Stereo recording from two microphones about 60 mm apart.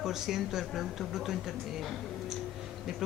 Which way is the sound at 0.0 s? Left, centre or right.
Centre.